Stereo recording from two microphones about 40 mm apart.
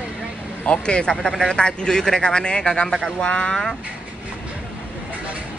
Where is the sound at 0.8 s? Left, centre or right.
Left.